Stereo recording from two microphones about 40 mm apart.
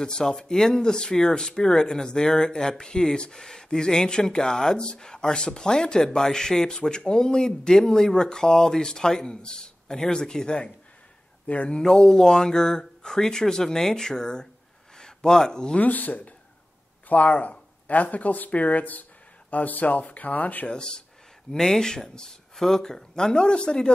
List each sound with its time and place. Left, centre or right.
0.0 s speech: centre
11.4 s speech: left
11.8 s speech: centre
15.8 s speech: left
20.6 s speech: left